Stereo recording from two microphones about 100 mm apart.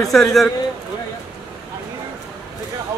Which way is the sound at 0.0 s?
5° left (ahead or behind).